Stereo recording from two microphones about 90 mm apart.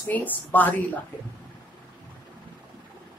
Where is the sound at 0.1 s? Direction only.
20° left (ahead or behind).